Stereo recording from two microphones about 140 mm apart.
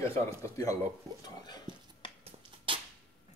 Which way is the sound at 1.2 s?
30° left (ahead or behind).